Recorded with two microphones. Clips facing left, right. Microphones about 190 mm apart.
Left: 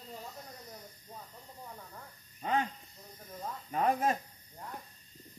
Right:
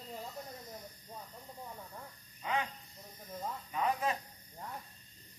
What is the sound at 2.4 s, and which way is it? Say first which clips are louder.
Speech: left 4 dB; 45° left (ahead or behind).